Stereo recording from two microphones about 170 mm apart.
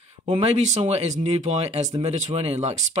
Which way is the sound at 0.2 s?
35° right (ahead or behind).